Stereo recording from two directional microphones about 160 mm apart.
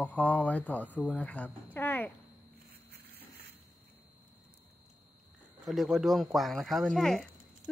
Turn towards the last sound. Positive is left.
turn(degrees=5)  # may be behind; listen again after turning